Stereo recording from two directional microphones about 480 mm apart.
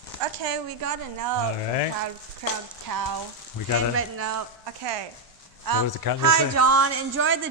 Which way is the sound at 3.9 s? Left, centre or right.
Right.